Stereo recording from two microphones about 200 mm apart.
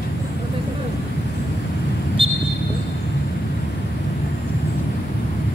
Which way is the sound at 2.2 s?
25° right (ahead or behind).